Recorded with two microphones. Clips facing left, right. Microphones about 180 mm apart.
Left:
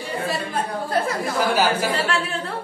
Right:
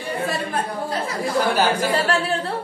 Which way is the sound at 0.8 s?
50° left (ahead or behind).